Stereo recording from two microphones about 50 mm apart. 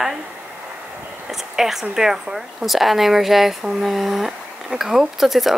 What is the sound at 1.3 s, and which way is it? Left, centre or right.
Speech, centre.